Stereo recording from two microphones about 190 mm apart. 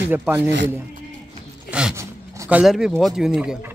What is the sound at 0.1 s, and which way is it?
Speech, 10° right (ahead or behind).